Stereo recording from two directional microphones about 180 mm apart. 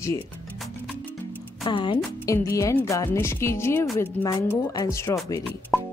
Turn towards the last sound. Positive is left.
turn(degrees=0)  # may be behind; listen again after turning